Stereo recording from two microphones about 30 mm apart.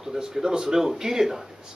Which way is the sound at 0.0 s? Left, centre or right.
Centre.